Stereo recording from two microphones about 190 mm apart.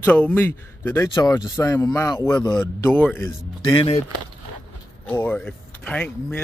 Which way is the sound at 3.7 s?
30° left (ahead or behind).